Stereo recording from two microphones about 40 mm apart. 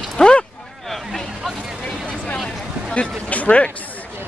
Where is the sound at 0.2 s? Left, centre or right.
Left.